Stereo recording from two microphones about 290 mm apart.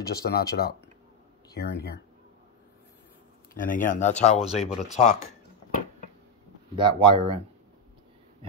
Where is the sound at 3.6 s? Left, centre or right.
Left.